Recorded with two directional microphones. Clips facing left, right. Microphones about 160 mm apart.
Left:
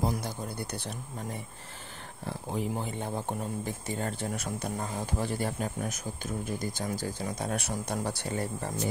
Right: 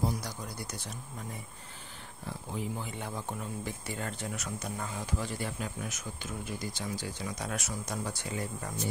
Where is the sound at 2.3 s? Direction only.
50° left (ahead or behind).